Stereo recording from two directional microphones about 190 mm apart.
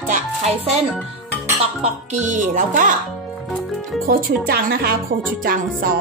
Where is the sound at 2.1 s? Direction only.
40° right (ahead or behind).